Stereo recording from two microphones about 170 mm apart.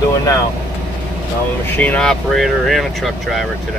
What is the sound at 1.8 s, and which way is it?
Speech, 5° left (ahead or behind).